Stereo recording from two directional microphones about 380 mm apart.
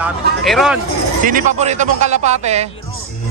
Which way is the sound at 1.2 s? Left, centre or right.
Centre.